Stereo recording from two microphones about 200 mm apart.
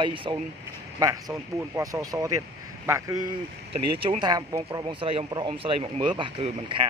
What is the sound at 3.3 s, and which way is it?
Speech, 30° right (ahead or behind).